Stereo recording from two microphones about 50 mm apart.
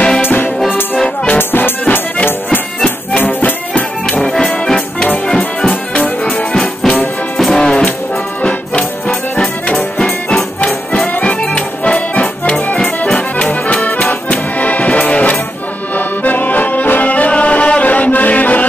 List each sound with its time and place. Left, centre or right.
0.2 s music: left
4.2 s music: centre
7.3 s music: centre
13.8 s music: left
16.3 s accordion: left